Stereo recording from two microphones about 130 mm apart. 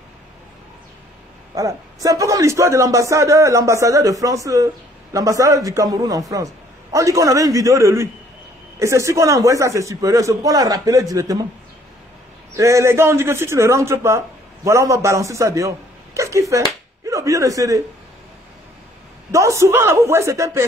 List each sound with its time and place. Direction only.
1.5 s a man's voice: 25° right (ahead or behind)
12.5 s a man's voice: 25° right (ahead or behind)
19.3 s a man's voice: 25° right (ahead or behind)